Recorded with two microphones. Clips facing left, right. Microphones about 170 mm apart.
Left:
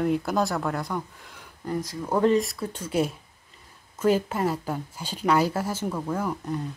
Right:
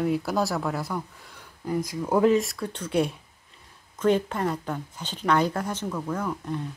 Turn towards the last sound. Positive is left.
turn(degrees=5)  # may be behind; listen again after turning